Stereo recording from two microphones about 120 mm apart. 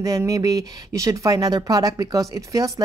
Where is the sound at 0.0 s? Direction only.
30° right (ahead or behind).